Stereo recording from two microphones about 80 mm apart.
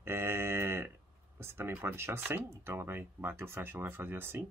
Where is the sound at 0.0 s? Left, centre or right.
Right.